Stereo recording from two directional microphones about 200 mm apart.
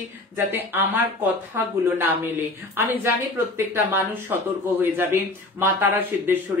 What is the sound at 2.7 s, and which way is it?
A woman's voice, 10° right (ahead or behind).